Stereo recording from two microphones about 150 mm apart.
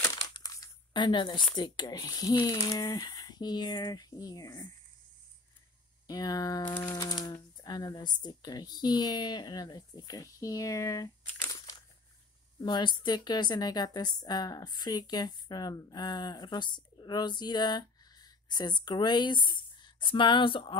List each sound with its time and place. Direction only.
0.0 s crumpling: 20° left (ahead or behind)
1.5 s speech: 30° left (ahead or behind)
6.0 s speech: 25° left (ahead or behind)